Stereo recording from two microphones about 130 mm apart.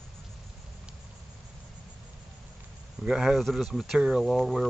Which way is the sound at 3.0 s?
5° right (ahead or behind).